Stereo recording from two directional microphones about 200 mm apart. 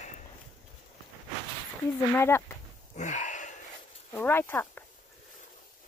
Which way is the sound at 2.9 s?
40° left (ahead or behind).